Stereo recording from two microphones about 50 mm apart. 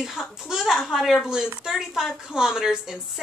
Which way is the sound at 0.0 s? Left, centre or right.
Centre.